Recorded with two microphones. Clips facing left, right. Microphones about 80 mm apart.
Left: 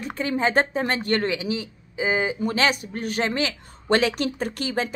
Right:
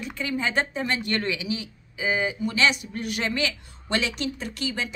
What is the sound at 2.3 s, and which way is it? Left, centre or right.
A man's voice, left.